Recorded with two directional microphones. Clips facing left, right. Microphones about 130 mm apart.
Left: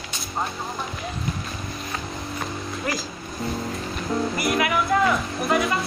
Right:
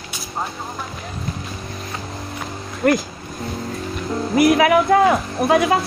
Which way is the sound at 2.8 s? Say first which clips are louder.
Right 13 dB; 70° right (ahead or behind).